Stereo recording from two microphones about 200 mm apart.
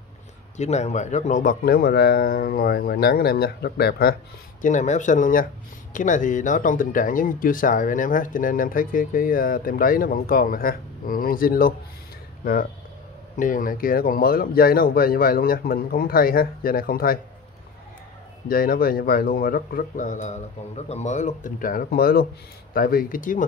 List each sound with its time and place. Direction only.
0.6 s speech: 35° left (ahead or behind)
13.4 s speech: 40° left (ahead or behind)
18.5 s speech: 45° left (ahead or behind)